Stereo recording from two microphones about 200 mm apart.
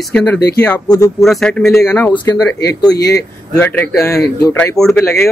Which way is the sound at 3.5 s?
10° left (ahead or behind).